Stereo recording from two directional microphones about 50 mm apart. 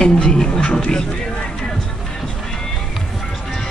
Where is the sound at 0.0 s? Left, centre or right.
Centre.